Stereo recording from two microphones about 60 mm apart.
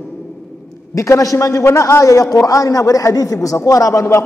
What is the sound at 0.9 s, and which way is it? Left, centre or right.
A man's voice, left.